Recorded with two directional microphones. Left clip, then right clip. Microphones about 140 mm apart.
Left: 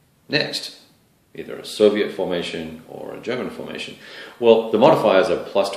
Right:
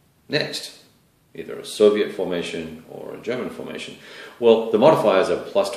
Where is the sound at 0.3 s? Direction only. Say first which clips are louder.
Left 2 dB; 15° left (ahead or behind).